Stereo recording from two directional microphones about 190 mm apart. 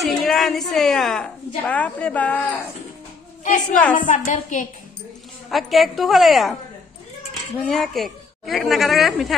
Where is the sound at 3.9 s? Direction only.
45° left (ahead or behind).